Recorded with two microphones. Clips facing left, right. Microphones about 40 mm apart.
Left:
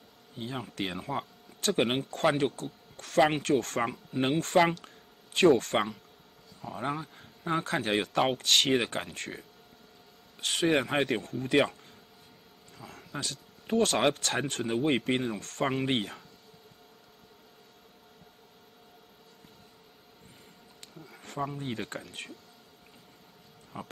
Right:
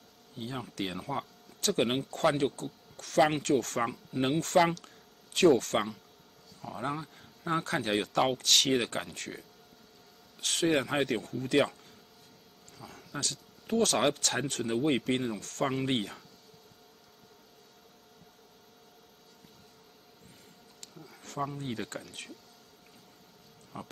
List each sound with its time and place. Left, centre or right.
0.4 s speech: centre
12.8 s a sound: centre
13.2 s speech: centre
21.0 s bee: centre
21.4 s speech: centre
23.7 s speech: centre